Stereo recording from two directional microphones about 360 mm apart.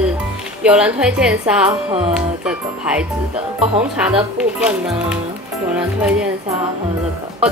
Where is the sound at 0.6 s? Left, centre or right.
Centre.